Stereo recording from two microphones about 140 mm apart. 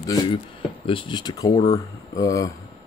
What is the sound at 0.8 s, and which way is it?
Speech, 35° left (ahead or behind).